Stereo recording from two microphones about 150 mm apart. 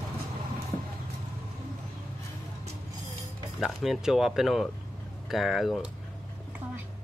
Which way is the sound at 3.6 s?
Centre (ahead or behind).